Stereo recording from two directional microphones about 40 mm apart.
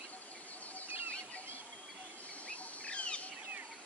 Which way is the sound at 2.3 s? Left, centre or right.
Left.